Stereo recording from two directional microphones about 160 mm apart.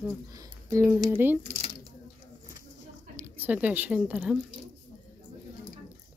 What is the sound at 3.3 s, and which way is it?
Speech, 10° right (ahead or behind).